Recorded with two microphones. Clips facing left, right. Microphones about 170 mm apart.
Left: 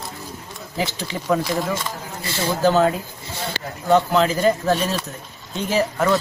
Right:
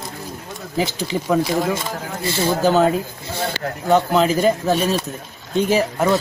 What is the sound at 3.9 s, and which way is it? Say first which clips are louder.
Speech: right 1 dB; 10° right (ahead or behind).